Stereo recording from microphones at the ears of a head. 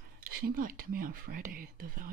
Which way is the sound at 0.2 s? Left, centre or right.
Right.